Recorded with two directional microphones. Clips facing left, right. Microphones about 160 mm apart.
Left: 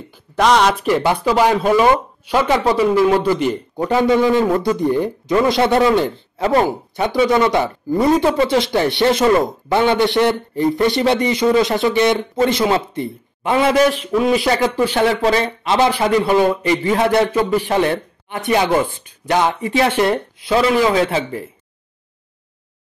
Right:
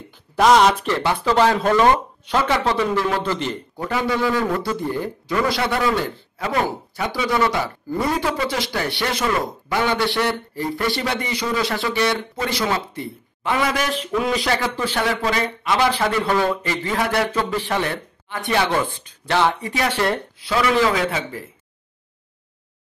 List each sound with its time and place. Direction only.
0.4 s speech: centre (ahead or behind)
0.8 s speech: 15° left (ahead or behind)
13.9 s speech: 5° left (ahead or behind)
14.4 s speech: 20° left (ahead or behind)
15.0 s speech: 30° left (ahead or behind)
15.9 s speech: 15° left (ahead or behind)